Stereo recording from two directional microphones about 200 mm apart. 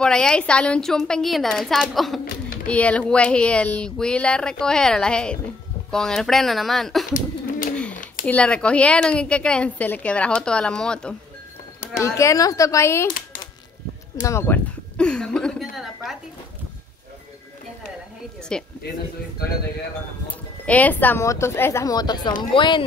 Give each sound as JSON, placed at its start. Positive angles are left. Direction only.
{"t": 0.0, "sound": "a woman's voice", "side_deg": 5}
{"t": 7.2, "sound": "bird", "side_deg": 40}
{"t": 7.9, "sound": "typing", "side_deg": 40}
{"t": 8.3, "sound": "a woman's voice", "side_deg": 5}
{"t": 12.0, "sound": "speech", "side_deg": 15}
{"t": 13.1, "sound": "typewriter", "side_deg": 45}
{"t": 14.2, "sound": "speech", "side_deg": 10}
{"t": 15.7, "sound": "a sound", "side_deg": 0}
{"t": 18.5, "sound": "a woman's voice", "side_deg": 5}
{"t": 20.2, "sound": "speech", "side_deg": 5}